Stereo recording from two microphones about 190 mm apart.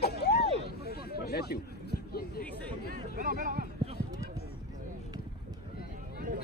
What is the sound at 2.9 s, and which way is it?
Chatter, 45° right (ahead or behind).